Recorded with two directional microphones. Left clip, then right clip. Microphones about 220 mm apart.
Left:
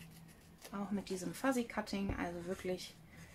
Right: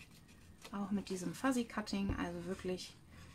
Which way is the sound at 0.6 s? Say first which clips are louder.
Even; 5° right (ahead or behind).